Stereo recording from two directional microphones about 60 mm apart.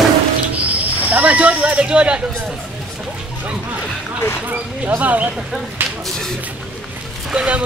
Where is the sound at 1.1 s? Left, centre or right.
Centre.